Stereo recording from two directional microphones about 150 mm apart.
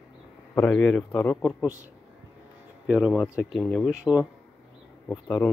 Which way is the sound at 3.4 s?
Centre (ahead or behind).